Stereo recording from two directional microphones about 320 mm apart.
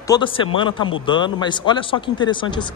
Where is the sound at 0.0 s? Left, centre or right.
Centre.